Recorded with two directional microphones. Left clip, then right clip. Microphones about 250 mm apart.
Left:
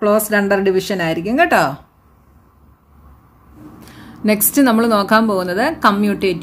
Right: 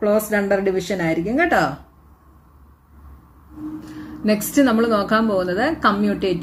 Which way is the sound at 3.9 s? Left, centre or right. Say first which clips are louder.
Left 4 dB; left.